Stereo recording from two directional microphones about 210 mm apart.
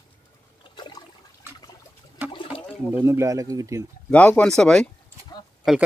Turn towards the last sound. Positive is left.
turn(degrees=0)  # may be behind; listen again after turning